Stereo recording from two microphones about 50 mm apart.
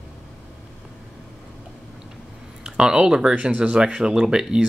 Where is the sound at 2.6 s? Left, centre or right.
Centre.